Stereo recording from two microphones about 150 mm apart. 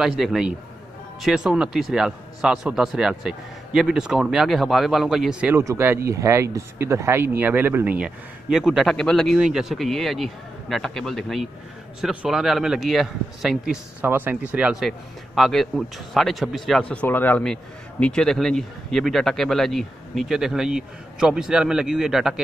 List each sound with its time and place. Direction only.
0.0 s a man's voice: centre (ahead or behind)
5.6 s a man's voice: 15° right (ahead or behind)
14.0 s a man's voice: 15° right (ahead or behind)